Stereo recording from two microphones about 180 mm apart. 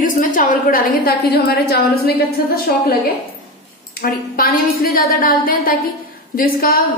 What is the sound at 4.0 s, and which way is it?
A woman's voice, 55° left (ahead or behind).